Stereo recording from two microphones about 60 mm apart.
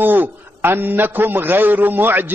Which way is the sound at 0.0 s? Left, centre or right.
Right.